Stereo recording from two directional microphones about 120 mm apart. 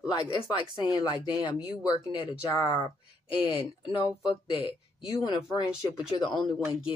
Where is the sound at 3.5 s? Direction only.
35° left (ahead or behind).